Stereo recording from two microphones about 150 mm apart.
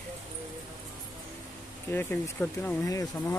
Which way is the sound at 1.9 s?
15° left (ahead or behind).